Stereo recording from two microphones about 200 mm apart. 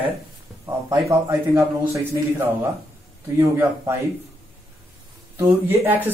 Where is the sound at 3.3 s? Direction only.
10° right (ahead or behind).